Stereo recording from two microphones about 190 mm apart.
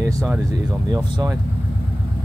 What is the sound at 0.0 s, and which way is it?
Speech, 10° right (ahead or behind).